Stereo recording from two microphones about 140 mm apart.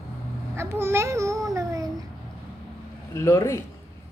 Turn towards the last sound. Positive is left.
turn(degrees=20)  # may be behind; listen again after turning